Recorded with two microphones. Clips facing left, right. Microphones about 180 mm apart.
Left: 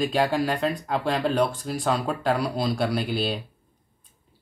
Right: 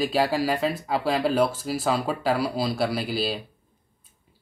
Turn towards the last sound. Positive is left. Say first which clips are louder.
# left 1 dB
turn(degrees=0)  # may be behind; listen again after turning